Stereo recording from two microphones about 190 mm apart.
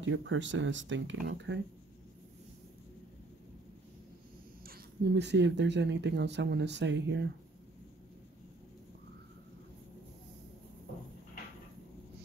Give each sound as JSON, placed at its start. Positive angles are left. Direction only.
{"t": 0.0, "sound": "speech", "side_deg": -85}
{"t": 4.6, "sound": "speech", "side_deg": -60}